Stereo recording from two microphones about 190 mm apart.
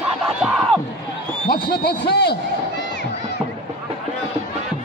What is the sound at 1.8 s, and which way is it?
Speech, 60° left (ahead or behind).